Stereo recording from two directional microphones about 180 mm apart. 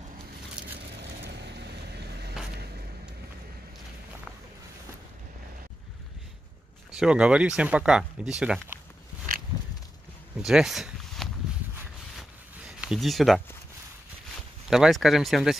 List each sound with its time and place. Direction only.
0.6 s vehicle: 5° right (ahead or behind)
1.2 s vehicle: 70° right (ahead or behind)
6.9 s speech: 5° right (ahead or behind)
10.4 s speech: centre (ahead or behind)
12.2 s a sound: 5° right (ahead or behind)
14.7 s speech: centre (ahead or behind)